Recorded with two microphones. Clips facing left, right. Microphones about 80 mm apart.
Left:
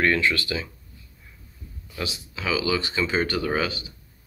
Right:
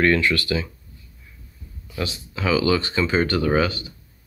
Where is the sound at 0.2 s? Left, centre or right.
Centre.